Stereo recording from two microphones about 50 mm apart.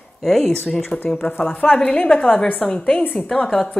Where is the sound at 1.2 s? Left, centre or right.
Left.